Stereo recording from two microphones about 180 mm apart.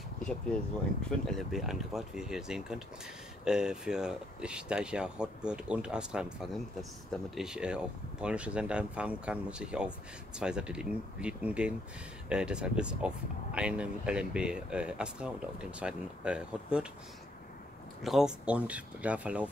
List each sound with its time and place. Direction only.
0.2 s speech: 5° left (ahead or behind)
18.0 s speech: 5° right (ahead or behind)